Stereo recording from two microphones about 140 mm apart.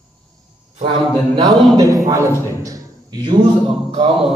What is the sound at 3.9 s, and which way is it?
Music, 40° right (ahead or behind).